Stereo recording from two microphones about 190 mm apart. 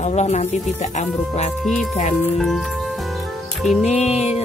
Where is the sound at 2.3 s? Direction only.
Centre (ahead or behind).